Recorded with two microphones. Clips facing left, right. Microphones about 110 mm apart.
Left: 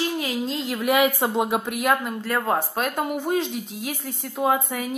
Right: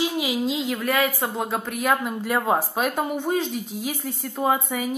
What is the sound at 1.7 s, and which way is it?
Speech, centre (ahead or behind).